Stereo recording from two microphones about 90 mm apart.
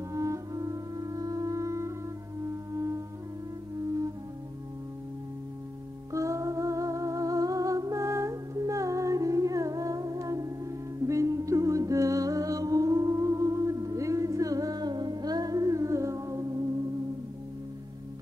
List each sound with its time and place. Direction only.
0.1 s music: 35° right (ahead or behind)
2.4 s singing bowl: 35° right (ahead or behind)
6.1 s music: 35° right (ahead or behind)